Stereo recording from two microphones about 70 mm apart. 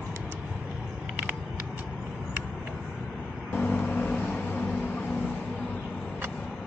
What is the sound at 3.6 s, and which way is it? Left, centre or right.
Vehicle, left.